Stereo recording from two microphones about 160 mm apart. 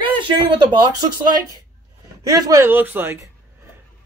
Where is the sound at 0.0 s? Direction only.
30° right (ahead or behind).